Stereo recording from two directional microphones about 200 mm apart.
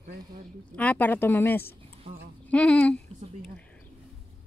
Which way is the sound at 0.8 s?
10° left (ahead or behind).